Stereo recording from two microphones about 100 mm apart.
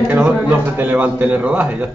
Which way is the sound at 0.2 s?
15° right (ahead or behind).